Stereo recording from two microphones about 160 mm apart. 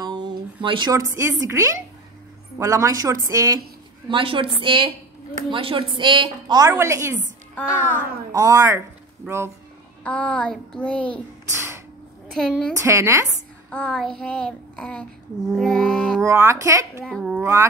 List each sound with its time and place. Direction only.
0.0 s a woman's voice: 30° right (ahead or behind)
4.1 s a woman's voice: 35° right (ahead or behind); by 7.2 s 15° right (ahead or behind)
7.5 s child singing: 10° left (ahead or behind)
8.3 s a woman's voice: 20° right (ahead or behind)
10.0 s child singing: 10° left (ahead or behind)
11.5 s a sound: 15° right (ahead or behind)
12.3 s a woman's voice: 5° left (ahead or behind)
12.7 s a woman's voice: 15° right (ahead or behind)
13.7 s child singing: 5° left (ahead or behind)
16.2 s a woman's voice: 20° right (ahead or behind)
17.0 s a child's voice: centre (ahead or behind)